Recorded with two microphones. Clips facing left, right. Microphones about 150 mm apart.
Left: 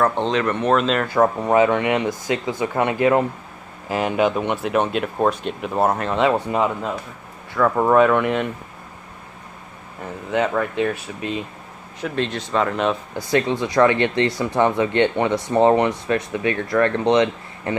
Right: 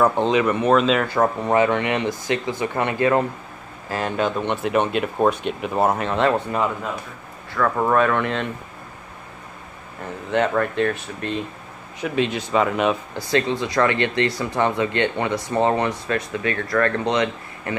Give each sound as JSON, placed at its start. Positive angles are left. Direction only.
{"t": 0.0, "sound": "speech", "side_deg": -5}
{"t": 1.0, "sound": "speech", "side_deg": 10}
{"t": 4.6, "sound": "speech", "side_deg": 0}
{"t": 6.5, "sound": "speech", "side_deg": 20}
{"t": 10.3, "sound": "speech", "side_deg": 5}
{"t": 12.0, "sound": "speech", "side_deg": -5}
{"t": 13.1, "sound": "speech", "side_deg": 15}